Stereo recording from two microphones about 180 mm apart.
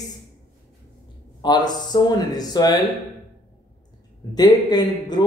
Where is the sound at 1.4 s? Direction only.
25° left (ahead or behind).